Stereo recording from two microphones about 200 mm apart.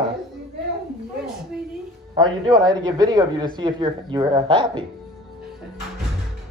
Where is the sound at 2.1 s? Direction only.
20° right (ahead or behind).